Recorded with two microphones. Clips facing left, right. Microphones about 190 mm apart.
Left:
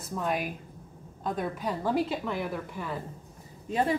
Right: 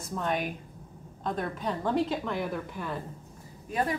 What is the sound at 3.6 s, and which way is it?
Speech, 25° left (ahead or behind).